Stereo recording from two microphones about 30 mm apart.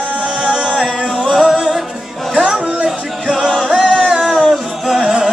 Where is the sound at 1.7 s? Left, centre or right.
Centre.